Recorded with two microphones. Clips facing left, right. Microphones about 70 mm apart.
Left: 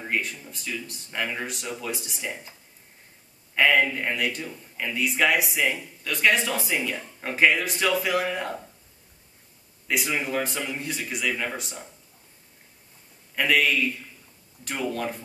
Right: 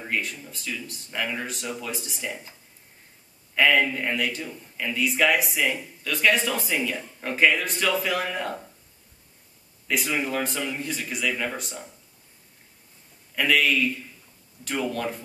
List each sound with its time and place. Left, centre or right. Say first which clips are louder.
0.0 s speech: left 1 dB; centre
3.5 s speech: even; centre
9.8 s speech: right 1 dB; centre
13.3 s a man's voice: even; centre